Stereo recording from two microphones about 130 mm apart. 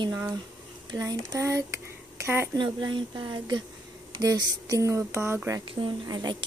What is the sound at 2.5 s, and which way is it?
A woman's voice, 35° right (ahead or behind).